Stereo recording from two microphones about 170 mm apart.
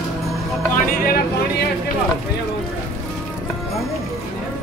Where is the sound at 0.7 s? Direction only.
60° left (ahead or behind).